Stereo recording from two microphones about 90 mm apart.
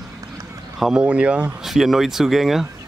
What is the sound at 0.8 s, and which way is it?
Speech, 10° right (ahead or behind).